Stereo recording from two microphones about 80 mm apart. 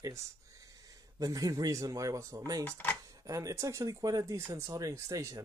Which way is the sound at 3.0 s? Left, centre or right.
Right.